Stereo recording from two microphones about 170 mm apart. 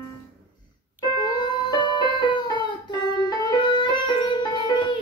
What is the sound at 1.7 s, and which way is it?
Music, 25° left (ahead or behind).